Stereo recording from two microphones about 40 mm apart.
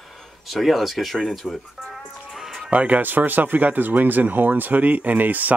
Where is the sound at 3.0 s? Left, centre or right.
Right.